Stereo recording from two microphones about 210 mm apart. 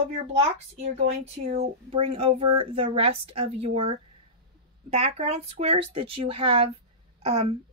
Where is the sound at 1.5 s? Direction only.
30° right (ahead or behind).